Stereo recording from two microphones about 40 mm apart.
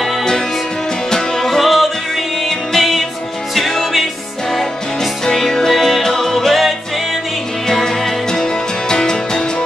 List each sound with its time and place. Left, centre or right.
0.0 s music: centre
5.2 s music: centre